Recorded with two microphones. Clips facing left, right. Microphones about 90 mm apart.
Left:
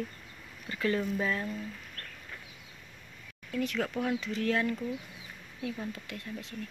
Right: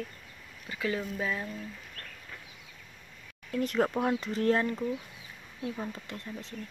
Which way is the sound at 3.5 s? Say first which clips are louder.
Right 4 dB; 40° right (ahead or behind).